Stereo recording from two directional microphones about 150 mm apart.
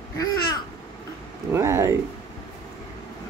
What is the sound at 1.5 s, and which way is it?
Speech, 20° right (ahead or behind).